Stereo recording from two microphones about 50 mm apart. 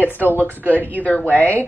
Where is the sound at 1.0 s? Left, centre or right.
Left.